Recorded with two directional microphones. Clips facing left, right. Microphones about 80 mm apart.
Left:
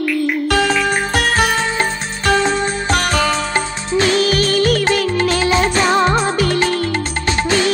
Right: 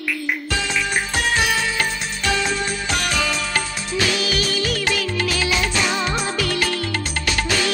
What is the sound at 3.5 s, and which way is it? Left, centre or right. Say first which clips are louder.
Music: left 6 dB; left.